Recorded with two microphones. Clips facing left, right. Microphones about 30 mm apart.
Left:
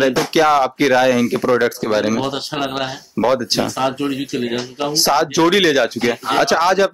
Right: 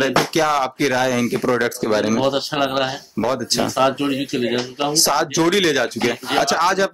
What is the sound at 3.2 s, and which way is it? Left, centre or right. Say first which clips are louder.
Speech: left 5 dB; centre.